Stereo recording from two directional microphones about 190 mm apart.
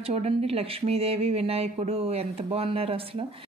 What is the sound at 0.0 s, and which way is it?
Speech, 30° right (ahead or behind).